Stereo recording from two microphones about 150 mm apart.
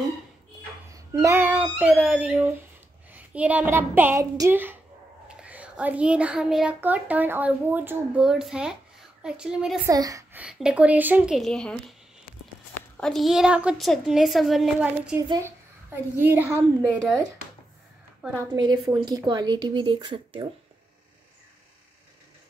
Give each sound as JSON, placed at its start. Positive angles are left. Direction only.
{"t": 0.9, "sound": "a child's voice", "side_deg": -20}
{"t": 9.8, "sound": "speech", "side_deg": -25}
{"t": 10.3, "sound": "a child's voice", "side_deg": -5}
{"t": 12.9, "sound": "a woman's voice", "side_deg": 5}
{"t": 15.1, "sound": "a child's voice", "side_deg": -10}
{"t": 18.4, "sound": "speech", "side_deg": -25}